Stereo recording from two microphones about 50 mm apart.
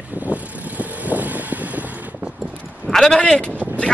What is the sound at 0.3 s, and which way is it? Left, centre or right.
Vehicle, right.